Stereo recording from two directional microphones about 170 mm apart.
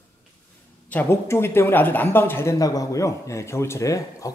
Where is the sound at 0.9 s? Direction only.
10° left (ahead or behind).